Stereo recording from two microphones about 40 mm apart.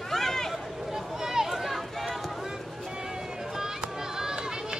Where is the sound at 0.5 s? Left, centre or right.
Centre.